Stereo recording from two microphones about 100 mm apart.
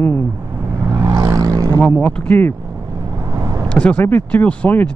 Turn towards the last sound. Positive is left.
turn(degrees=15)  # may be behind; listen again after turning